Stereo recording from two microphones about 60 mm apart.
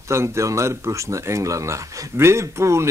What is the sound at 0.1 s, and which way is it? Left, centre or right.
Speech, right.